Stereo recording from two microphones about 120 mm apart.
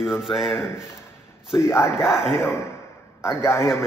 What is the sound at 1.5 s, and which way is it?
Speech, 20° left (ahead or behind).